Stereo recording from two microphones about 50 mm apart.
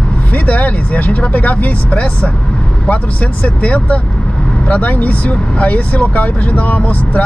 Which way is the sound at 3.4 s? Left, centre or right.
Left.